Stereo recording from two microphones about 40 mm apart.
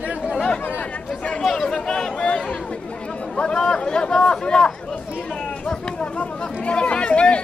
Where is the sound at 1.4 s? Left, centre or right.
Centre.